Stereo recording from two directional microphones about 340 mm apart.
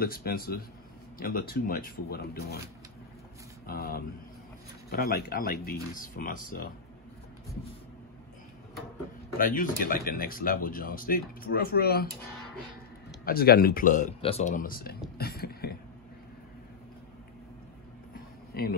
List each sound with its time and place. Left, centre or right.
0.0 s speech: left
3.6 s speech: left
9.4 s speech: left
13.2 s speech: left
15.1 s a sound: left
18.5 s a sound: left